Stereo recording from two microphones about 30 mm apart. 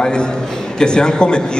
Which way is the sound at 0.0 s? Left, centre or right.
Left.